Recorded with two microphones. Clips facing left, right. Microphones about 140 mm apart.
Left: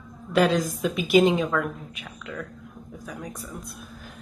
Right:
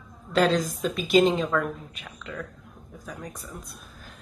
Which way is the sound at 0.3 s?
10° left (ahead or behind).